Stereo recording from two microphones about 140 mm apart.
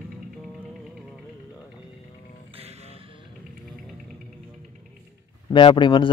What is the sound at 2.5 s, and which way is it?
Music, 45° right (ahead or behind).